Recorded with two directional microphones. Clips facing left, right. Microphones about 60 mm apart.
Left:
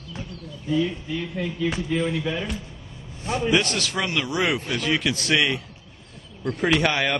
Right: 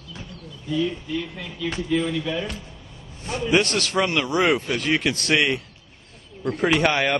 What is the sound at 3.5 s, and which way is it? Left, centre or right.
A man's voice, right.